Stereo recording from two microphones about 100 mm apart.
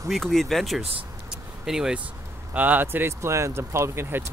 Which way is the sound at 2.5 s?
15° right (ahead or behind).